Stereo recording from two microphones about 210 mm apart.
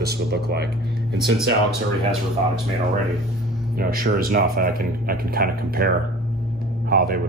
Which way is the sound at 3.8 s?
45° right (ahead or behind).